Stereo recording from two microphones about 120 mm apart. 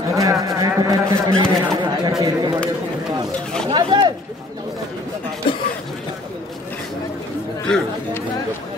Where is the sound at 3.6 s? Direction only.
40° right (ahead or behind).